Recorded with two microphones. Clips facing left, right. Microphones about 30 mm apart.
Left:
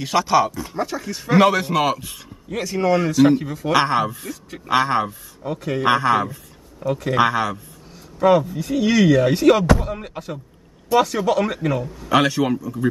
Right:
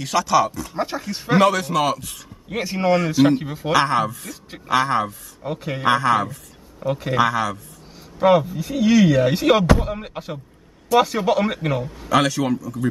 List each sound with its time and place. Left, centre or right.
0.0 s a man's voice: centre
0.7 s a man's voice: right
1.4 s a man's voice: centre
2.5 s a man's voice: right
3.7 s a man's voice: centre
5.4 s speech: centre
5.9 s a man's voice: centre
6.9 s speech: centre
7.2 s a man's voice: centre
8.2 s speech: centre
8.5 s speech: centre
9.4 s speech: centre
12.1 s a man's voice: centre